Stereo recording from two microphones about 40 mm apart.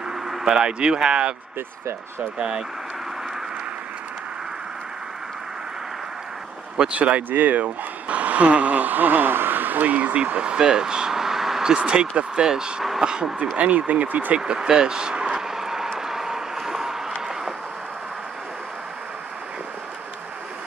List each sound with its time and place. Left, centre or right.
0.1 s speech: centre
2.3 s speech: right
6.9 s speech: right
7.2 s speech: right
10.1 s speech: right; by 11.7 s centre
11.7 s speech: right
13.6 s speech: right
14.3 s speech: right
15.5 s vehicle: centre
16.1 s a sound: centre